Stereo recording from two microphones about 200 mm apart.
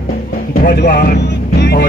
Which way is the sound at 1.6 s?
55° left (ahead or behind).